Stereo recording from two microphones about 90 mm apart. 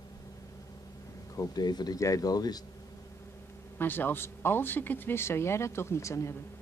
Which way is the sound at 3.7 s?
20° left (ahead or behind).